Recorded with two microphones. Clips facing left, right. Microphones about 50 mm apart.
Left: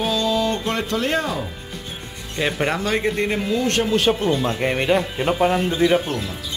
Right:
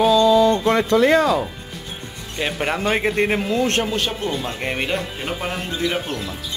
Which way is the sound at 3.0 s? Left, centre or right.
Centre.